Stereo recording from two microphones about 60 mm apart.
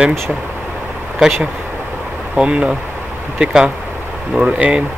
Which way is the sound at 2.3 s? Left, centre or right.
Centre.